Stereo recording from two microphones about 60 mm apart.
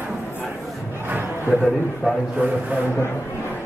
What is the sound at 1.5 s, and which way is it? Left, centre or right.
Speech, centre.